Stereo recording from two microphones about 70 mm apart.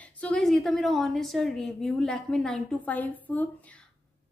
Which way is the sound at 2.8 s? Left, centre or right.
Left.